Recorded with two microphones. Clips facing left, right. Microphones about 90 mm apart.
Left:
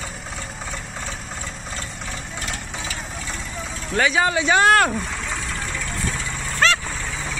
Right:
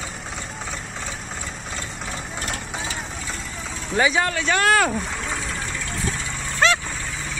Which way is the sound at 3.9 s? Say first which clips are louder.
Even; 5° right (ahead or behind).